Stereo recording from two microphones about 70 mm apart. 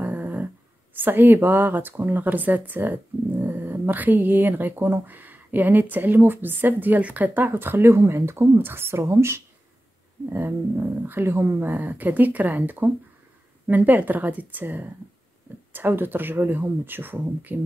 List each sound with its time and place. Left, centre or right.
0.0 s humming: right
1.0 s speech: right
10.3 s speech: right
11.7 s speech: right